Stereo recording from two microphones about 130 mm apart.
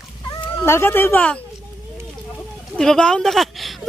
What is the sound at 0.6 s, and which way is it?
Speech, 20° left (ahead or behind).